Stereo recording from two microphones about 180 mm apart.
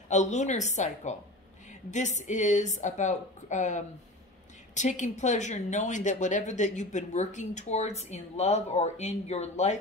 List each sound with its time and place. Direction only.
0.1 s a woman's voice: 40° left (ahead or behind)